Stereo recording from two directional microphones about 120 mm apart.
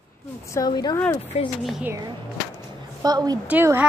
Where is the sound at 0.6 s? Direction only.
35° left (ahead or behind).